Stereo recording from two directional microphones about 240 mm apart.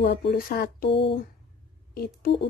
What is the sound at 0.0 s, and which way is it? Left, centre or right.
Speech, left.